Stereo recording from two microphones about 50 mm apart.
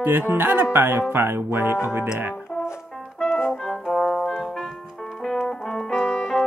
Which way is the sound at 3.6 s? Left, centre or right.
Centre.